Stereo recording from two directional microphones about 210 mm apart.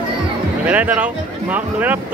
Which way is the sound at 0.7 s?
5° right (ahead or behind).